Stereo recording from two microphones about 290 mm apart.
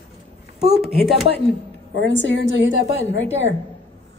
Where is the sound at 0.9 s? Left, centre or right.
Centre.